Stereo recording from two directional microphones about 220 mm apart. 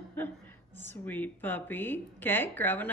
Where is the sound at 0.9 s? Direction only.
10° left (ahead or behind).